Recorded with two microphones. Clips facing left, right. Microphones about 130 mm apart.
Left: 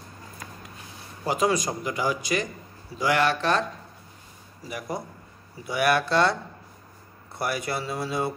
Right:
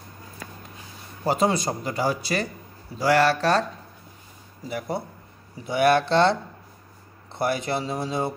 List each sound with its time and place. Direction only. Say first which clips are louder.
1.2 s speech: right 2 dB; 30° right (ahead or behind)
4.6 s speech: right 3 dB; 30° right (ahead or behind)
7.3 s speech: right 4 dB; 25° right (ahead or behind)